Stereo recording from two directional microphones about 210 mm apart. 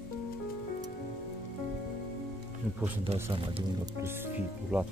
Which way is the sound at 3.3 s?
25° right (ahead or behind).